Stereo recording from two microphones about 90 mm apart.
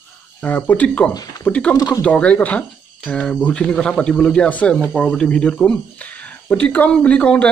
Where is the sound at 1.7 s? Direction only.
45° left (ahead or behind).